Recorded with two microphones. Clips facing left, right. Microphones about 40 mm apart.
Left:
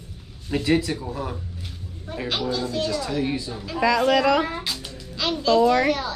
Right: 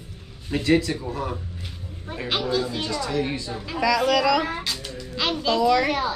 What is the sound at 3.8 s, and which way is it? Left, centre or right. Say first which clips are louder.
Speech: left 1 dB; left.